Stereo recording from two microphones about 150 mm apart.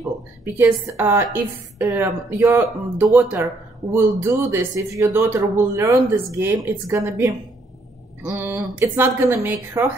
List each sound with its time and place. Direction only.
0.6 s speech: 15° right (ahead or behind)